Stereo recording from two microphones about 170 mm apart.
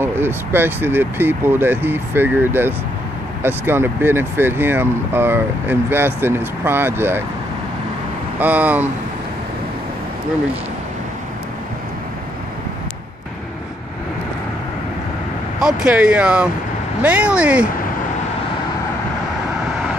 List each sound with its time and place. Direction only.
0.0 s speech: 15° right (ahead or behind)
8.4 s speech: 10° right (ahead or behind)
15.6 s speech: 5° right (ahead or behind)